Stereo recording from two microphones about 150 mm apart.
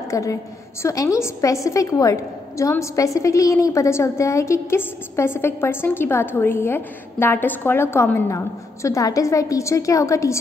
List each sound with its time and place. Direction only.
0.1 s a woman's voice: 20° left (ahead or behind)